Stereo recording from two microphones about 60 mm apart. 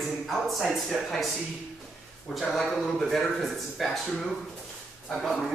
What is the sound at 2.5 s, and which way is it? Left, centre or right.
Speech, centre.